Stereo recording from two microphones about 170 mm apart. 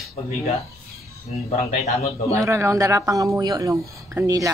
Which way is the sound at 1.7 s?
40° left (ahead or behind).